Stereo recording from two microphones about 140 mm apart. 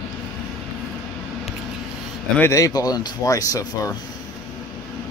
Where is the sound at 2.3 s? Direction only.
20° left (ahead or behind).